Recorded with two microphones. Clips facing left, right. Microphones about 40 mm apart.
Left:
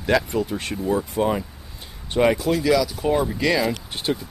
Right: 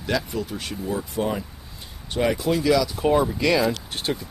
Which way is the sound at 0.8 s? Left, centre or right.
Centre.